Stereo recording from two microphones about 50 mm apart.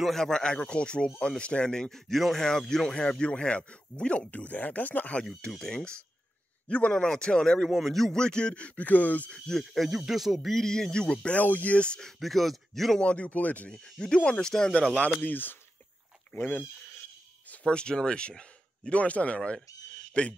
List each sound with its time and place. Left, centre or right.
0.1 s speech: centre; by 5.1 s left
5.4 s speech: centre; by 9.3 s left
9.5 s speech: centre
10.5 s speech: centre
11.3 s speech: left
12.0 s speech: centre
13.0 s speech: left
13.9 s speech: centre
15.2 s speech: left
17.6 s speech: centre